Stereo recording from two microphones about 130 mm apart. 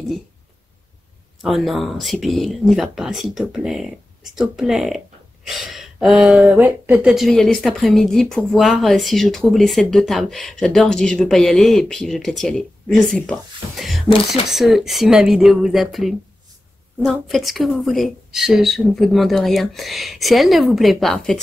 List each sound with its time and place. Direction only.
1.4 s speech: centre (ahead or behind)
7.1 s speech: centre (ahead or behind)
14.0 s speech: 45° left (ahead or behind)
14.5 s speech: centre (ahead or behind)